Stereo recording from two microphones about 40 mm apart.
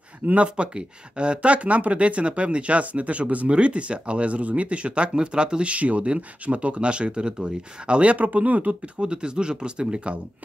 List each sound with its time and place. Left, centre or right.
0.4 s speech: right
5.7 s speech: right
9.0 s speech: right